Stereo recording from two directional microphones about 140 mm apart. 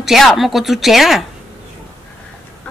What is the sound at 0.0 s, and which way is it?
A woman's voice, centre (ahead or behind).